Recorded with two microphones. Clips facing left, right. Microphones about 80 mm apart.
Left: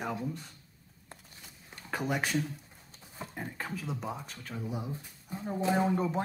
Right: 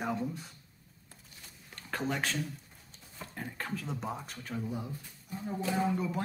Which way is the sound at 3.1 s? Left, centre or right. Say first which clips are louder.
Left 2 dB; left.